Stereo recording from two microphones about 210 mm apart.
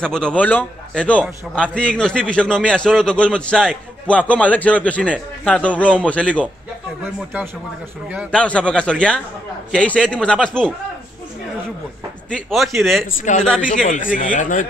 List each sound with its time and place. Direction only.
0.0 s a man's voice: 5° left (ahead or behind)
8.3 s a man's voice: 5° left (ahead or behind)
12.3 s a man's voice: centre (ahead or behind)
13.3 s speech: 35° left (ahead or behind)